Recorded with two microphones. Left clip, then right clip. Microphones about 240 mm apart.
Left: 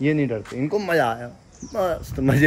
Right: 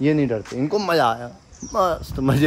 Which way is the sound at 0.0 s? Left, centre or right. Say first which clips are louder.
Right 2 dB; right.